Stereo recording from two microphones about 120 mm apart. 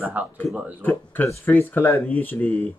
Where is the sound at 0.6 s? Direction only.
15° right (ahead or behind).